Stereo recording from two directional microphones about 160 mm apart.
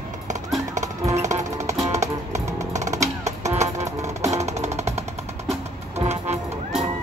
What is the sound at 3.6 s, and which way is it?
Music, 45° right (ahead or behind).